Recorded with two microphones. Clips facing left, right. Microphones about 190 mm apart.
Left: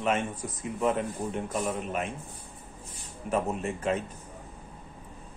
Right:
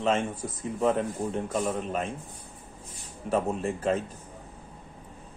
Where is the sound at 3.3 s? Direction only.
30° right (ahead or behind).